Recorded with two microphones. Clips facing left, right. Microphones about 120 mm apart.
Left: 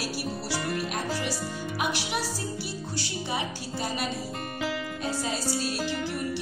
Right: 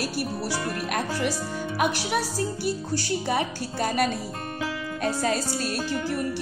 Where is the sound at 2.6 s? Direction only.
50° right (ahead or behind).